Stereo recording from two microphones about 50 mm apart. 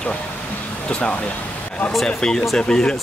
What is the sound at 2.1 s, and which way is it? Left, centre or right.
Speech, centre.